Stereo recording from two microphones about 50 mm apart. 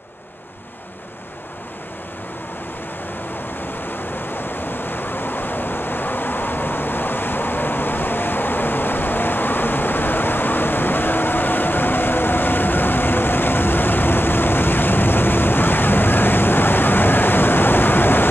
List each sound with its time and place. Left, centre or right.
3.9 s waves: left